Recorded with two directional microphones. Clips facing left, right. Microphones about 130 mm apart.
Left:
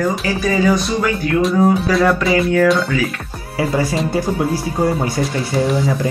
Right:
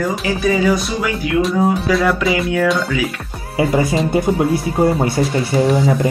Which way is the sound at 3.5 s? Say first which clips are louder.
Right 2 dB; 20° right (ahead or behind).